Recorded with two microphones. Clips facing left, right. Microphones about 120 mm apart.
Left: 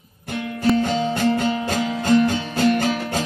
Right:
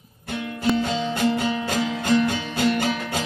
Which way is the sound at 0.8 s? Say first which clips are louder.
Left 3 dB; 40° left (ahead or behind).